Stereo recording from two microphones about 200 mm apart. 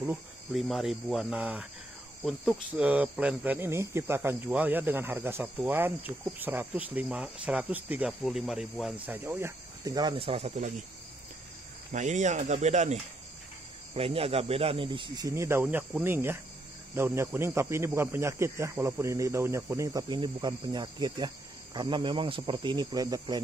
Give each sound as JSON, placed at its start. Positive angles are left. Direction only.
{"t": 0.0, "sound": "speech", "side_deg": -5}
{"t": 11.9, "sound": "speech", "side_deg": -35}